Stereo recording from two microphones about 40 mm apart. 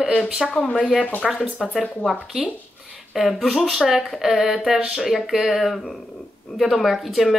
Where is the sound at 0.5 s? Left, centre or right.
Left.